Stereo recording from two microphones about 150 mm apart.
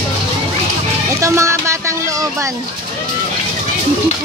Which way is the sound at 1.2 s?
20° right (ahead or behind).